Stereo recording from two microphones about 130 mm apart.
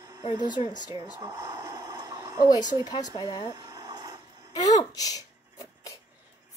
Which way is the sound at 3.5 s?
30° right (ahead or behind).